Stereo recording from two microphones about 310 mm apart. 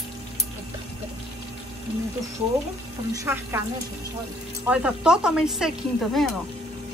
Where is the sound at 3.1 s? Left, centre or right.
Centre.